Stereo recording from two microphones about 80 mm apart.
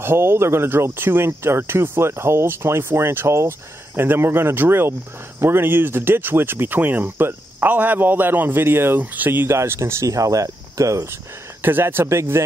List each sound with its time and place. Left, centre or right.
0.0 s speech: right
11.6 s speech: right